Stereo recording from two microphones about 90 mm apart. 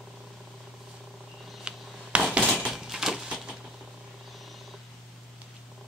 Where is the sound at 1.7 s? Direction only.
10° right (ahead or behind).